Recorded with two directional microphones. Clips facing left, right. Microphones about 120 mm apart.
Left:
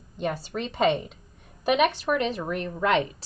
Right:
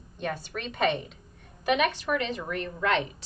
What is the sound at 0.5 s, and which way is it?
Speech, 25° left (ahead or behind).